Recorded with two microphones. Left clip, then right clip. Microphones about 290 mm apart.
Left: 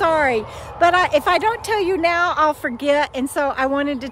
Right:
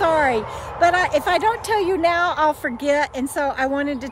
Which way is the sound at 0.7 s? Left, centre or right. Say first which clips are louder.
Left 2 dB; centre.